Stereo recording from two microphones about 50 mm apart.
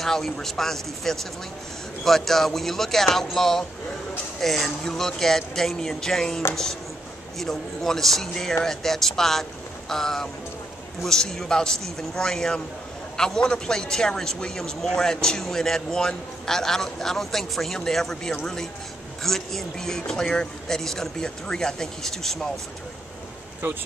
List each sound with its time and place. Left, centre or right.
0.0 s speech: centre
23.6 s speech: right